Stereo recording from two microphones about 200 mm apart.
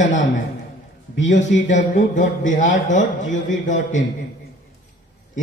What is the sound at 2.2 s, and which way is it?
Speech, 40° left (ahead or behind).